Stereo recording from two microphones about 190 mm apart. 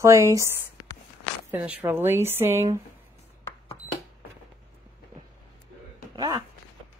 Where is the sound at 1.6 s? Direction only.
10° right (ahead or behind).